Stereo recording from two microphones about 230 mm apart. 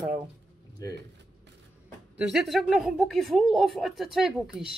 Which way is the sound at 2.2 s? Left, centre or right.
Centre.